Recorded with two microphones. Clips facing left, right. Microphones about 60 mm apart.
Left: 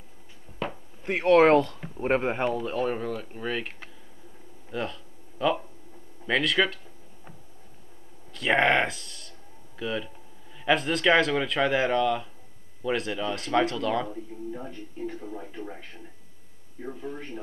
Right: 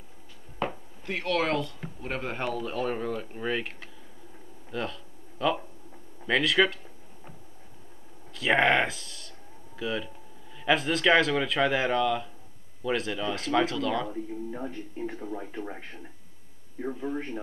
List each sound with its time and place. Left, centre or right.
1.0 s speech: left
2.3 s a man's voice: centre
2.6 s speech: centre
4.6 s a sound: centre
6.2 s speech: centre
8.3 s speech: centre
14.7 s speech: right
17.0 s speech: centre